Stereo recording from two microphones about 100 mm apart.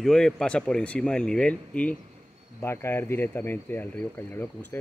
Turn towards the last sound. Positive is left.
turn(degrees=20)  # may be behind; listen again after turning